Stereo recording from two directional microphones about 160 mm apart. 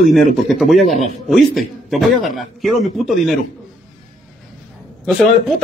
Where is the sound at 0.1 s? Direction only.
Centre (ahead or behind).